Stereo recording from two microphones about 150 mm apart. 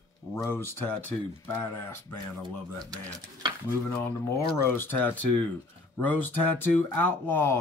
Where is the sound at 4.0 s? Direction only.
15° left (ahead or behind).